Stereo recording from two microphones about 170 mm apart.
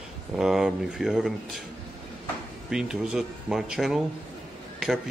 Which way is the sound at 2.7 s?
5° right (ahead or behind).